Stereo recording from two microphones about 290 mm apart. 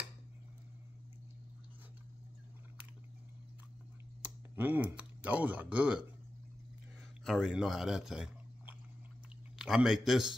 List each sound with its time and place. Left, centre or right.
4.2 s speech: centre
7.2 s speech: centre